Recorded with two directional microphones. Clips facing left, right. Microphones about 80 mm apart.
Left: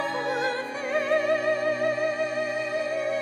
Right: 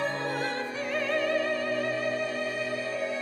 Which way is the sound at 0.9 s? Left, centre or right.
Left.